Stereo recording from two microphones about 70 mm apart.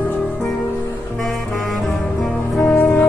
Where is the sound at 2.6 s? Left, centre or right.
Left.